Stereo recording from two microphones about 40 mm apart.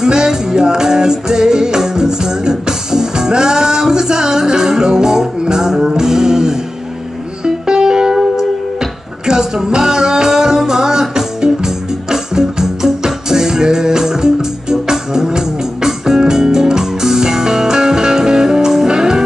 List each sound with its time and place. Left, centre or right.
0.0 s music: centre
9.2 s music: centre